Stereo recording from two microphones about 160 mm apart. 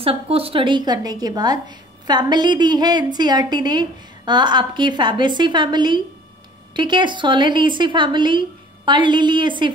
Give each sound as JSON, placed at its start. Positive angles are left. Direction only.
{"t": 0.0, "sound": "a woman's voice", "side_deg": -35}